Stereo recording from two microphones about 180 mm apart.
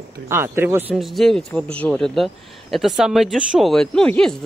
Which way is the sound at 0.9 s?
Centre (ahead or behind).